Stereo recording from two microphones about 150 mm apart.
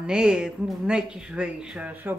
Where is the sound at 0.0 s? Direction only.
5° right (ahead or behind).